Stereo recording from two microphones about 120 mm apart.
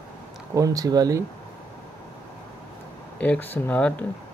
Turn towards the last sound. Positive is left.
turn(degrees=15)  # may be behind; listen again after turning